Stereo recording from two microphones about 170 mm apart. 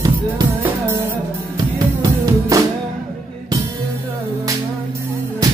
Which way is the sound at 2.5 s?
20° right (ahead or behind).